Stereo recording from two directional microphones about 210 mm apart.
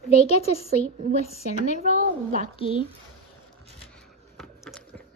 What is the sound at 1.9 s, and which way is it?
Speech, 35° right (ahead or behind).